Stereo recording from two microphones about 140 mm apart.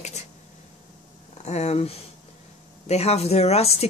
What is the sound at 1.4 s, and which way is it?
Speech, 50° left (ahead or behind).